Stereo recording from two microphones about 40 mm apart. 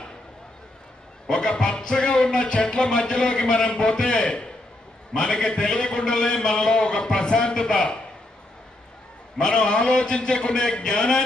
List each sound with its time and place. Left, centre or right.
1.3 s music: centre
9.4 s music: centre